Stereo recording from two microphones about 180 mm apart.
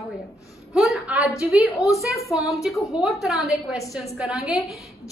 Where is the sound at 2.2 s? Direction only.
15° left (ahead or behind).